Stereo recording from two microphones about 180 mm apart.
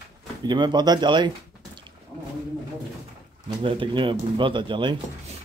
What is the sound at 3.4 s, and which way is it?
Speech, 30° right (ahead or behind).